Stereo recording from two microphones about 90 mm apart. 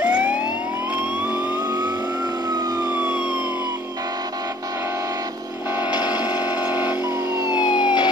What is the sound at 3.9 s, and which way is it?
Music, 45° right (ahead or behind).